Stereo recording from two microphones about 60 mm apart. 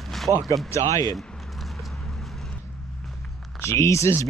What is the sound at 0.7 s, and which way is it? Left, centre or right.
Speech, left.